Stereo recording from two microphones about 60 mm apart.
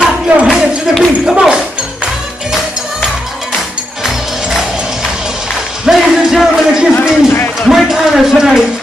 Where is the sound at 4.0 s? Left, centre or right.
Centre.